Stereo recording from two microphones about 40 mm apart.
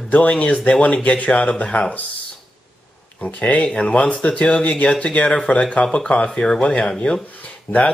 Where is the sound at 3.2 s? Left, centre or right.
Left.